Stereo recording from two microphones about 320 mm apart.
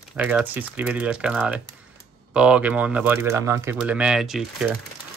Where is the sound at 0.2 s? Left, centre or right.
Centre.